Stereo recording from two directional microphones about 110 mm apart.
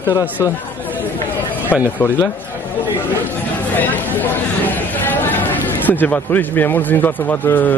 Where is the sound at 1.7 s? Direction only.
15° left (ahead or behind).